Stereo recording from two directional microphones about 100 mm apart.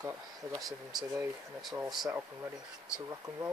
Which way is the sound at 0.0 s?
35° right (ahead or behind).